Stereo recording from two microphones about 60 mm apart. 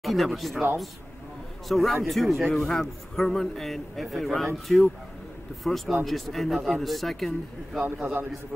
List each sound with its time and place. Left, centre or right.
0.0 s a man's voice: centre
1.7 s a man's voice: centre
8.0 s a man's voice: right